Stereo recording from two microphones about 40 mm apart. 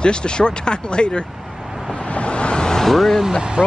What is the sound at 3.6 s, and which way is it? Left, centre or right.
Speech, right.